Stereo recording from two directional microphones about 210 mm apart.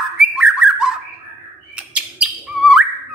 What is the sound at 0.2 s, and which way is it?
Bird, 5° right (ahead or behind).